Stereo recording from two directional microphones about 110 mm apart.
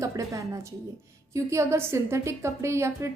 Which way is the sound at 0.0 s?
30° right (ahead or behind).